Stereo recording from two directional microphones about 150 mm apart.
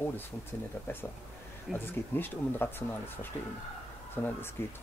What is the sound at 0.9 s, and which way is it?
Speech, 15° left (ahead or behind).